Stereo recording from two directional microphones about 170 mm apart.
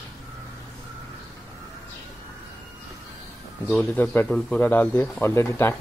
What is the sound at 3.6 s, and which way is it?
Speech, 5° left (ahead or behind).